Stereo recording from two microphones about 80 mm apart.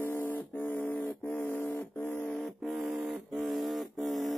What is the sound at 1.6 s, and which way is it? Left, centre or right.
Train, left.